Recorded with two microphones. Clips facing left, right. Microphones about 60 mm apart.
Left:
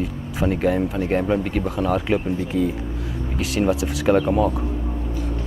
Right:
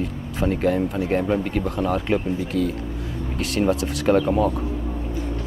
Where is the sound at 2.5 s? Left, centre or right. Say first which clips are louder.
Left 2 dB; left.